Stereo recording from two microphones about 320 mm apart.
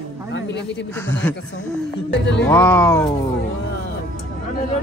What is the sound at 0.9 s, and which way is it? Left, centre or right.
Speech, centre.